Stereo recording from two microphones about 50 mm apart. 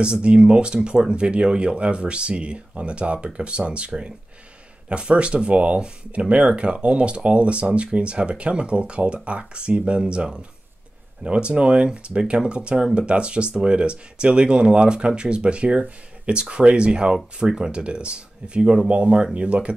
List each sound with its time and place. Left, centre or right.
0.0 s speech: centre